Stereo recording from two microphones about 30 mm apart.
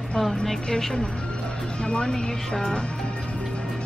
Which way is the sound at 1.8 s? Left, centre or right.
Left.